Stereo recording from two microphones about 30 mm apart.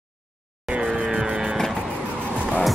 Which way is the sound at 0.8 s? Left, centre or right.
Right.